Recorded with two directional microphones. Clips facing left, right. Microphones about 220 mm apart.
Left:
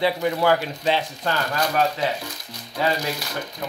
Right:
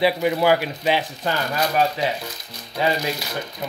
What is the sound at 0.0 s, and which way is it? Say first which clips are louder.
Speech: right 2 dB; 15° right (ahead or behind).